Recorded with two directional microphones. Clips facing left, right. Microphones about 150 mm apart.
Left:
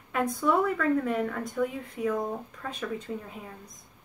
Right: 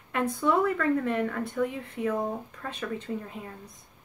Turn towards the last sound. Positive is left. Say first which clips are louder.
# right 2 dB
turn(degrees=0)  # may be behind; listen again after turning